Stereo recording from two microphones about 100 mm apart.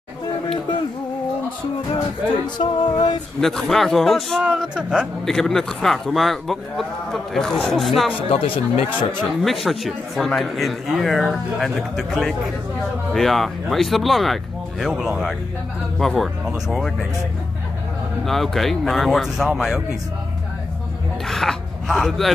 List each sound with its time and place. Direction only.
2.4 s music: 50° left (ahead or behind)
3.3 s speech: 5° left (ahead or behind)
4.4 s speech: 10° right (ahead or behind)
5.2 s speech: 5° left (ahead or behind)
8.3 s speech: 65° left (ahead or behind)
9.4 s speech: centre (ahead or behind)
18.2 s speech: centre (ahead or behind)
21.3 s speech: 5° left (ahead or behind)